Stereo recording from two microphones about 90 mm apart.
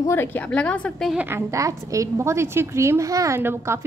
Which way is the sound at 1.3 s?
30° right (ahead or behind).